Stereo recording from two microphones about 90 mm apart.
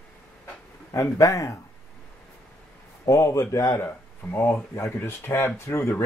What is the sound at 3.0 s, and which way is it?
Speech, 40° left (ahead or behind).